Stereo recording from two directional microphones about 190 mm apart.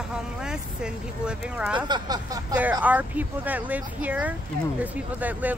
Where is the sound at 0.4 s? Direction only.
5° right (ahead or behind).